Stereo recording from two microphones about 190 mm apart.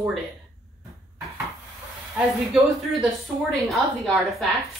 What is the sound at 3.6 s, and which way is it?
Speech, centre (ahead or behind).